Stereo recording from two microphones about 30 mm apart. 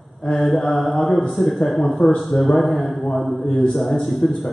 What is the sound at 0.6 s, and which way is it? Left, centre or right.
Mantra, centre.